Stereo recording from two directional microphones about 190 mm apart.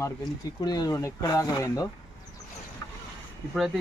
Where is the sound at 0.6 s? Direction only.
20° left (ahead or behind).